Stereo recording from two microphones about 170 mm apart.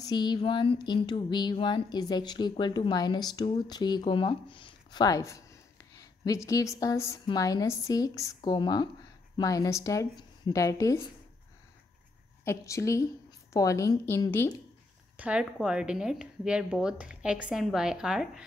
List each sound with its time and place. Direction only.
0.0 s a woman's voice: 25° left (ahead or behind)
12.4 s a woman's voice: 15° left (ahead or behind)
15.1 s a woman's voice: 5° right (ahead or behind)